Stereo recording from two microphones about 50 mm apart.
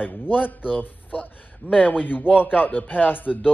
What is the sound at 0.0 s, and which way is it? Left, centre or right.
Speech, left.